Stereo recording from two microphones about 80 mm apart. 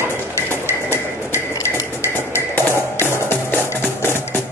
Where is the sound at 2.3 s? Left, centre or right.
Left.